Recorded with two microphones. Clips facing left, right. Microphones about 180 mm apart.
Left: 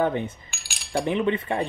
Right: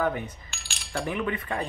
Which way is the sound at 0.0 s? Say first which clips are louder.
Left 4 dB; 25° left (ahead or behind).